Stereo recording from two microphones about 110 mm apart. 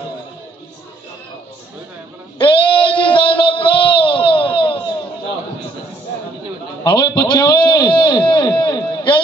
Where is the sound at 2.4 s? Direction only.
50° left (ahead or behind).